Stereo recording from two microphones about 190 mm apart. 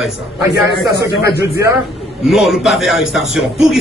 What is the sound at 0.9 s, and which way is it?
Speech, 60° left (ahead or behind).